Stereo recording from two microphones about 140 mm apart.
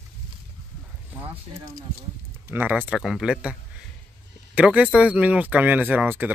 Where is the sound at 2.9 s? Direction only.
Centre (ahead or behind).